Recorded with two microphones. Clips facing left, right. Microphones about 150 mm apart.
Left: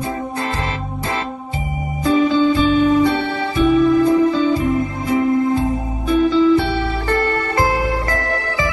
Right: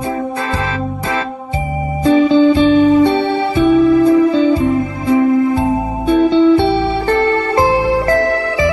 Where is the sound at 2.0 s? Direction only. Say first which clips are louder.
Right 5 dB; 25° right (ahead or behind).